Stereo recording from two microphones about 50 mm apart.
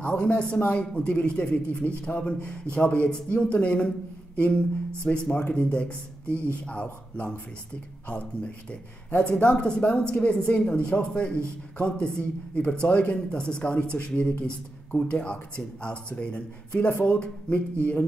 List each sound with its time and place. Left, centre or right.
0.0 s speech: left
5.0 s speech: centre
17.5 s speech: left